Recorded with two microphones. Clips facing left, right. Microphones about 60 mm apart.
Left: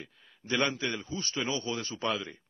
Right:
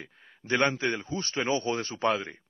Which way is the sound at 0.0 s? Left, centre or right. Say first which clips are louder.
Right 2 dB; right.